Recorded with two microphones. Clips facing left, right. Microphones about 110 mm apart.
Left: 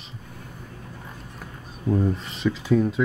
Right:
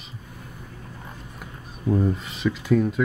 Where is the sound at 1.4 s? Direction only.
5° right (ahead or behind).